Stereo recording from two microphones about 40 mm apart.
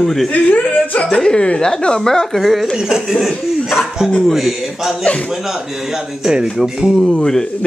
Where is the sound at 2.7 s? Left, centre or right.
Centre.